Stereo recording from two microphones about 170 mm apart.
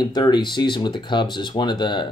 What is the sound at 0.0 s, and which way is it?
Speech, 25° left (ahead or behind).